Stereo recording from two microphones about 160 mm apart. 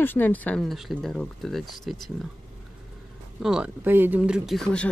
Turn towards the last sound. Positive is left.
turn(degrees=5)  # may be behind; listen again after turning